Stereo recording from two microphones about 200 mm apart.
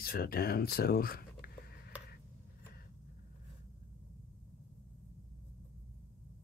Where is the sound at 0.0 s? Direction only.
50° left (ahead or behind).